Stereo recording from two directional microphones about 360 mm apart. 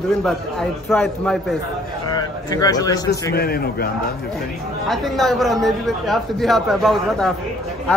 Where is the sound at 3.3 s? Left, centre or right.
Left.